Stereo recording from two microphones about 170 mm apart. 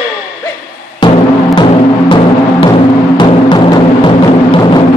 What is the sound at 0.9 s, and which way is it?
Music, 25° left (ahead or behind).